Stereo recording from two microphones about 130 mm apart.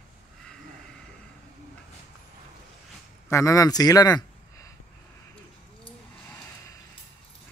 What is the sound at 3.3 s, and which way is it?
A man's voice, 25° left (ahead or behind).